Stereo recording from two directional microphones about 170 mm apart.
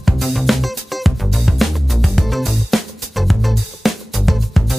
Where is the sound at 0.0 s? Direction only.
Centre (ahead or behind).